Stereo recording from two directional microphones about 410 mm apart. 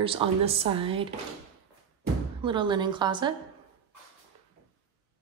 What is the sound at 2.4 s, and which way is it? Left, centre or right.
Speech, centre.